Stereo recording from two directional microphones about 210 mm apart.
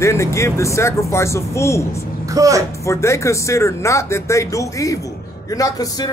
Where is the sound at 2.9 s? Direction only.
15° left (ahead or behind).